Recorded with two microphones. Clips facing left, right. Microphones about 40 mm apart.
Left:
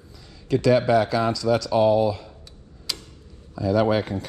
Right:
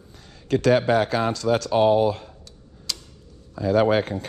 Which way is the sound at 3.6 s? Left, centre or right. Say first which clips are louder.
Right 1 dB; right.